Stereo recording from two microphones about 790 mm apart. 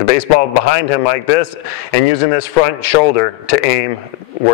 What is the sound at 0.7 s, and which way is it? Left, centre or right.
A man's voice, left.